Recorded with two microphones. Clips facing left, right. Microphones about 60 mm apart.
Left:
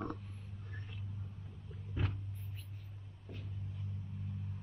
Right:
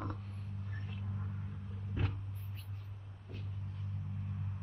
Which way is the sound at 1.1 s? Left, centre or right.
Right.